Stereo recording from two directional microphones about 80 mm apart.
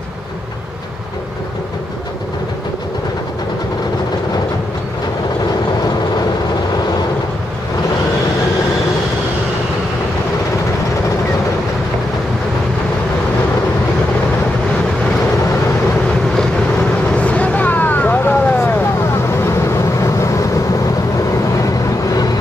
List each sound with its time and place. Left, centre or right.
17.1 s vehicle: centre
19.4 s vehicle: left